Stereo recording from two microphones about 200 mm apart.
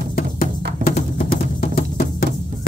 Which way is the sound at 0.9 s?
50° left (ahead or behind).